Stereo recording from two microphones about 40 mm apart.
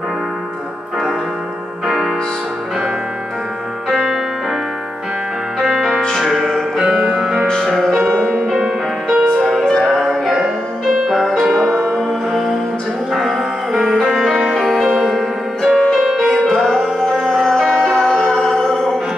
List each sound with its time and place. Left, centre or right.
3.9 s music: right
5.9 s music: centre
6.2 s music: centre
7.6 s music: centre
8.1 s music: centre
8.5 s music: centre
9.4 s music: centre
9.7 s music: centre
11.5 s music: centre
12.3 s music: centre
14.9 s music: centre
15.1 s music: centre
18.0 s music: centre